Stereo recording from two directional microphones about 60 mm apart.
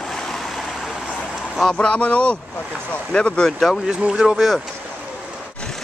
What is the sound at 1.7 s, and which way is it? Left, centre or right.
Speech, centre.